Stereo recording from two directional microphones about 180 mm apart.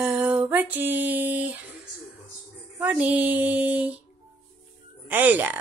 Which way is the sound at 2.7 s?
10° right (ahead or behind).